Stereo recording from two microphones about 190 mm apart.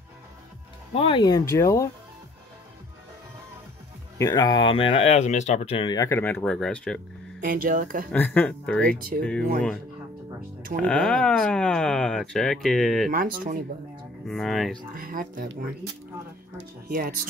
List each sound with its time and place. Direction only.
0.9 s speech: 25° left (ahead or behind)
4.2 s speech: 20° left (ahead or behind)
7.3 s speech: 45° right (ahead or behind)
8.1 s speech: 10° left (ahead or behind)
8.8 s speech: 50° right (ahead or behind)
9.2 s speech: 5° left (ahead or behind)
10.8 s speech: 5° left (ahead or behind)
13.1 s speech: 45° right (ahead or behind)
14.2 s speech: centre (ahead or behind)
15.0 s speech: 50° right (ahead or behind)
16.8 s speech: 50° right (ahead or behind)